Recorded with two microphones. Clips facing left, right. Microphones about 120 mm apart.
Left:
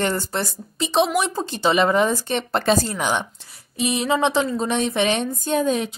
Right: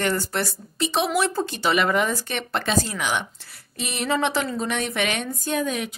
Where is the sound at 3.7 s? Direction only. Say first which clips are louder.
Left 4 dB; 15° left (ahead or behind).